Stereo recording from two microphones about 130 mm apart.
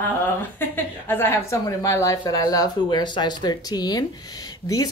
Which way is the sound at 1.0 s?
15° left (ahead or behind).